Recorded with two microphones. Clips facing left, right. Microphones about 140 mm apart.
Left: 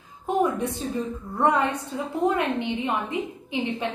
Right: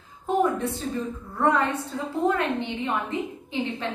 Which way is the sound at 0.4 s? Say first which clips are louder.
Left 1 dB; 15° left (ahead or behind).